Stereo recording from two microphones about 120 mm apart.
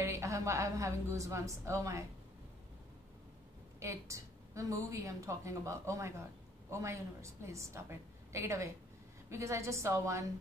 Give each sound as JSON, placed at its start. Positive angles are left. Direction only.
{"t": 0.0, "sound": "a woman's voice", "side_deg": -25}
{"t": 3.8, "sound": "a woman's voice", "side_deg": -25}